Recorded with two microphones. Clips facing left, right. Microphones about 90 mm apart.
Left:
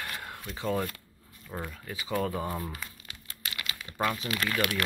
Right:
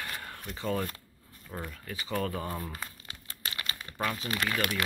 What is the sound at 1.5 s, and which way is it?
Speech, 15° left (ahead or behind).